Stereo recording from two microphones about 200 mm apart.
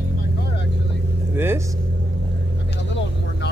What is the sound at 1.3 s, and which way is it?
Speech, 10° right (ahead or behind).